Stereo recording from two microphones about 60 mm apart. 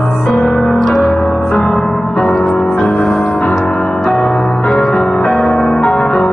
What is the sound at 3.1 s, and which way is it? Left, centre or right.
Music, centre.